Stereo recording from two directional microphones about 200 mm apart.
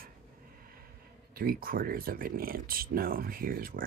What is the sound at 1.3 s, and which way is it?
Speech, 45° right (ahead or behind).